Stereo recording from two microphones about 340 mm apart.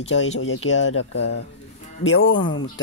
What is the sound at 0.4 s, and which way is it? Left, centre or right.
Speech, left.